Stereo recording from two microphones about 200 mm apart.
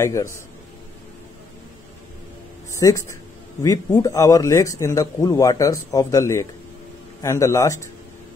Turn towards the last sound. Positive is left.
turn(degrees=15)  # may be behind; listen again after turning